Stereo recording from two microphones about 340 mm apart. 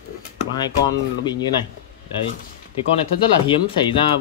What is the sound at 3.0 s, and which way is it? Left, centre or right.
Speech, centre.